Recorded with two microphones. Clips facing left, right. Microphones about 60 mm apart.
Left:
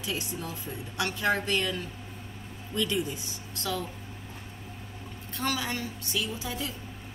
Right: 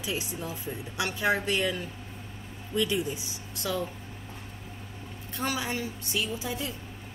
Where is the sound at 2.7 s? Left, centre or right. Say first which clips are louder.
Right 1 dB; centre.